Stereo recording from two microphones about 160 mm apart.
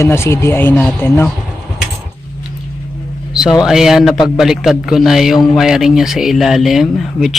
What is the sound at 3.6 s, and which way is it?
A man's voice, 5° right (ahead or behind).